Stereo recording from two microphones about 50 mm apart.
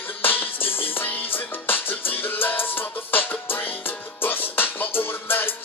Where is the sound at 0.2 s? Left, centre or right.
Left.